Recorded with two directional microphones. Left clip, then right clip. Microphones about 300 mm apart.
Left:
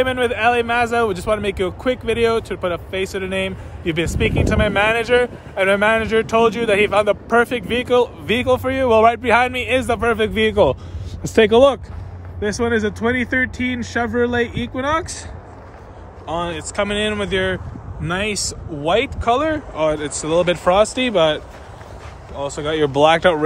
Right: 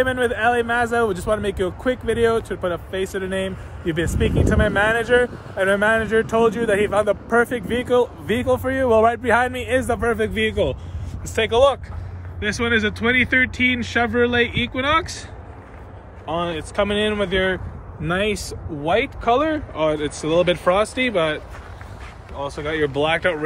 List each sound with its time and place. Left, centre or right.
0.0 s speech: centre
10.3 s speech: left
12.4 s speech: centre
16.3 s speech: centre
22.4 s speech: centre